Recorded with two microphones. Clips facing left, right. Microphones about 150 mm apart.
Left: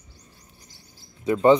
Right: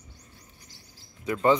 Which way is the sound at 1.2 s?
25° left (ahead or behind).